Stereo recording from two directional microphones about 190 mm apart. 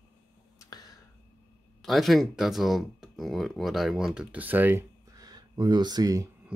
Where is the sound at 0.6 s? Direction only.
20° left (ahead or behind).